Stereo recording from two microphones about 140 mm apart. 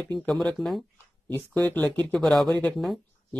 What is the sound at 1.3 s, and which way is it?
Speech, 15° left (ahead or behind).